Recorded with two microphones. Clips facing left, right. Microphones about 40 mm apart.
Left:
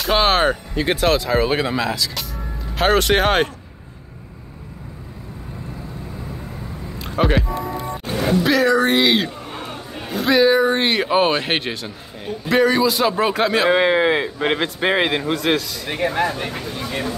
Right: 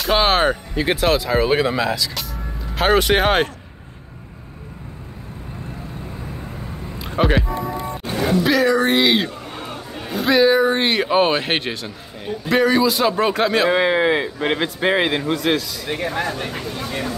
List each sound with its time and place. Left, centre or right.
0.0 s speech: centre
7.0 s vehicle: centre
8.0 s speech: centre
13.7 s speech: left
16.1 s speech: centre